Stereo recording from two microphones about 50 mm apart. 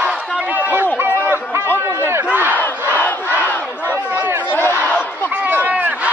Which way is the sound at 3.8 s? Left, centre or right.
Right.